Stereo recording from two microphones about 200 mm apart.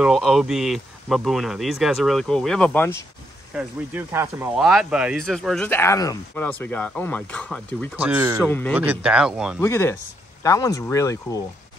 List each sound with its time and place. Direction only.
0.0 s speech: centre (ahead or behind)
3.5 s speech: 10° right (ahead or behind); by 7.9 s 5° left (ahead or behind)
7.9 s speech: 5° right (ahead or behind)
8.5 s speech: 10° left (ahead or behind)
8.7 s speech: 5° right (ahead or behind)
9.6 s speech: 15° left (ahead or behind)